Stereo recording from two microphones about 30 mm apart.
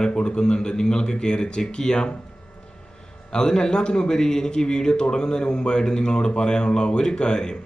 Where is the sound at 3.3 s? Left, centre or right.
Left.